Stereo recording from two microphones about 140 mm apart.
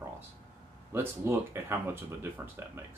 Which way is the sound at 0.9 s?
15° right (ahead or behind).